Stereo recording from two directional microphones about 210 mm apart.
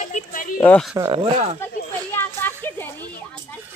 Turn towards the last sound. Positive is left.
turn(degrees=10)  # may be behind; listen again after turning